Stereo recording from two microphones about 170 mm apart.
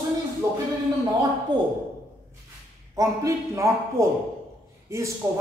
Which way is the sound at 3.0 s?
20° right (ahead or behind).